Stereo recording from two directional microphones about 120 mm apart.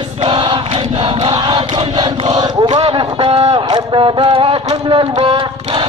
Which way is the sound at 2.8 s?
50° right (ahead or behind).